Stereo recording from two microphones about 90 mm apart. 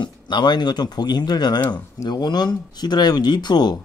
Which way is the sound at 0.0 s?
55° left (ahead or behind).